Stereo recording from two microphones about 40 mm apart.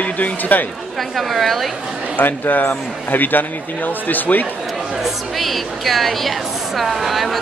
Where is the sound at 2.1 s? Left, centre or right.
Left.